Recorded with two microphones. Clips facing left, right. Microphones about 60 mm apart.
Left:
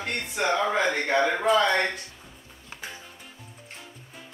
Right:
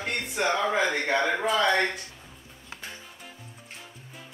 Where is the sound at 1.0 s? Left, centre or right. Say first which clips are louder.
Left 2 dB; centre.